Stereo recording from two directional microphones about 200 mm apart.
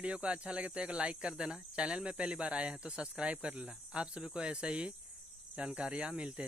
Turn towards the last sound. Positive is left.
turn(degrees=-5)  # may be behind; listen again after turning